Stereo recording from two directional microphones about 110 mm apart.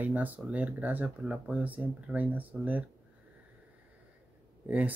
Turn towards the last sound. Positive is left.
turn(degrees=-15)  # may be behind; listen again after turning